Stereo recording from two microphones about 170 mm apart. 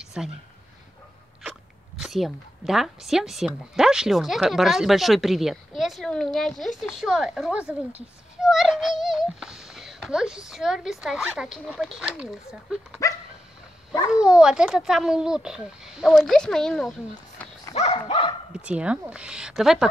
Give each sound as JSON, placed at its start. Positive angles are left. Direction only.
{"t": 0.0, "sound": "a sound", "side_deg": 0}
{"t": 2.0, "sound": "speech", "side_deg": 0}
{"t": 14.1, "sound": "speech", "side_deg": -5}
{"t": 17.7, "sound": "dog", "side_deg": 35}
{"t": 18.5, "sound": "speech", "side_deg": -5}